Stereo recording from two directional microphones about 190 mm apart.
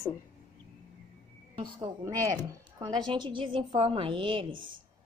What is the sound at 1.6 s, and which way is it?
Speech, 20° right (ahead or behind).